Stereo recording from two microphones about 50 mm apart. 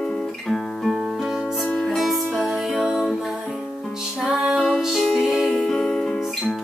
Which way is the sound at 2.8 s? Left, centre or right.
Centre.